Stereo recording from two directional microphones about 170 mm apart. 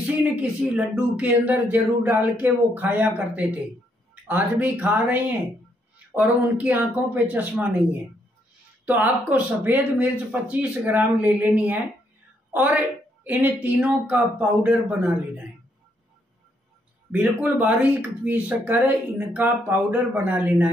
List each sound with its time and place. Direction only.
0.0 s speech: 10° right (ahead or behind)
13.2 s speech: 10° right (ahead or behind)
17.1 s speech: 10° right (ahead or behind)